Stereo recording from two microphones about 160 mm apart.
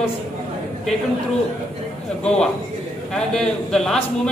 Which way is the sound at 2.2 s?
5° left (ahead or behind).